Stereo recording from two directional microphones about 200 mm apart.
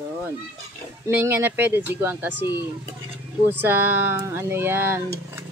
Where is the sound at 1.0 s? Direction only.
10° right (ahead or behind).